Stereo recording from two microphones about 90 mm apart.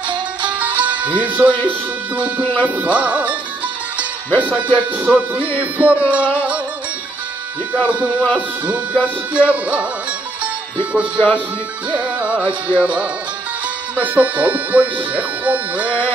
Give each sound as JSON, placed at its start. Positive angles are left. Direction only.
{"t": 0.5, "sound": "music", "side_deg": -15}
{"t": 2.1, "sound": "speech", "side_deg": -15}
{"t": 4.4, "sound": "speech", "side_deg": -15}
{"t": 7.7, "sound": "speech", "side_deg": -15}
{"t": 10.4, "sound": "music", "side_deg": -15}
{"t": 11.1, "sound": "speech", "side_deg": 20}
{"t": 12.0, "sound": "speech", "side_deg": -15}